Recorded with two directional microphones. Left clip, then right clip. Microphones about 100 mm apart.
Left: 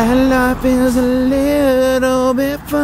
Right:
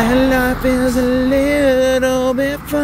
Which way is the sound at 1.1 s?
65° left (ahead or behind).